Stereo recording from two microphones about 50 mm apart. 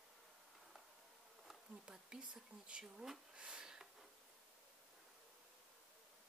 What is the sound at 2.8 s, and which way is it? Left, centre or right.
Speech, centre.